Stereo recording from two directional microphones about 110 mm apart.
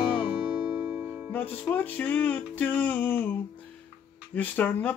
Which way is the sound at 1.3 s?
15° left (ahead or behind).